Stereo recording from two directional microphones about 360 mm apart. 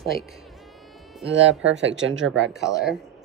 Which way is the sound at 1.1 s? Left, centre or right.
Centre.